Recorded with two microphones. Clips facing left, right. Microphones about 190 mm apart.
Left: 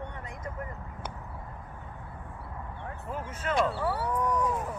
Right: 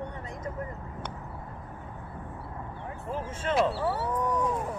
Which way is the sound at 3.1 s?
30° right (ahead or behind).